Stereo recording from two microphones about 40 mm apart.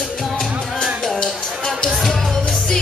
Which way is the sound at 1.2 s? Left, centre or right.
Centre.